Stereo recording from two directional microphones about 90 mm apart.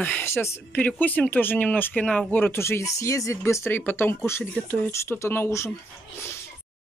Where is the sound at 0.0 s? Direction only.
20° left (ahead or behind).